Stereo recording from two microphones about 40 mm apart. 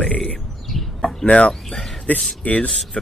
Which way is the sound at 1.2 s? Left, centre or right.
Left.